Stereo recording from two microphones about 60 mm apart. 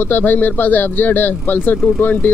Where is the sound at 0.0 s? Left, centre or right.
Left.